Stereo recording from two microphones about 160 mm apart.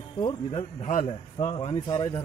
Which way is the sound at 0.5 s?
45° left (ahead or behind).